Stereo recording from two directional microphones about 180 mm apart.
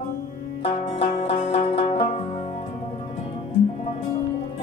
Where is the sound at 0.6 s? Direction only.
35° left (ahead or behind).